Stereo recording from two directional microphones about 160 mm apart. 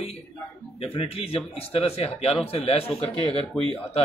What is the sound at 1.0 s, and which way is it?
A man's voice, 40° left (ahead or behind).